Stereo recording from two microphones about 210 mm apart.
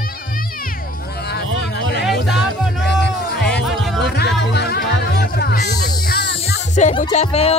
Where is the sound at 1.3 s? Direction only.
50° left (ahead or behind).